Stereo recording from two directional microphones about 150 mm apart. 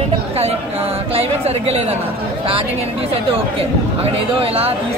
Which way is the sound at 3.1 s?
40° right (ahead or behind).